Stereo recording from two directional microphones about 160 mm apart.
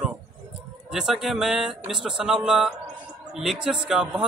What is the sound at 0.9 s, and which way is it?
A man's voice, centre (ahead or behind).